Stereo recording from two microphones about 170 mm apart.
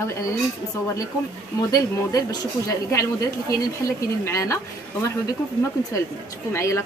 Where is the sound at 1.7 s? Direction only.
20° left (ahead or behind).